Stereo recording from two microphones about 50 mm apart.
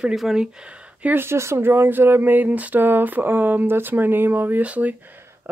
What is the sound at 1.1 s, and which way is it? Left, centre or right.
Speech, right.